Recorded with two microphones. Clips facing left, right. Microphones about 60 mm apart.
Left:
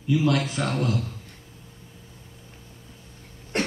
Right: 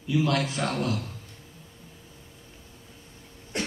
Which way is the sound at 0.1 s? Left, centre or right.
Left.